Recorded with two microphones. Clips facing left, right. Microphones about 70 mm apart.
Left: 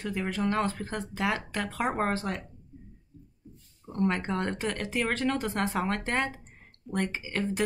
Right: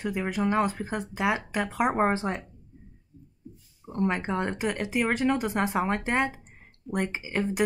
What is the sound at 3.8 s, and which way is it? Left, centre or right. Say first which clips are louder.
Speech: right 1 dB; centre.